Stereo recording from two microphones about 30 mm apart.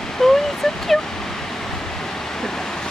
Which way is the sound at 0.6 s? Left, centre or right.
Centre.